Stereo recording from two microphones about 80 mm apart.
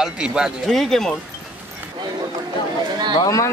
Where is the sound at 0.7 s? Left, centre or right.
Centre.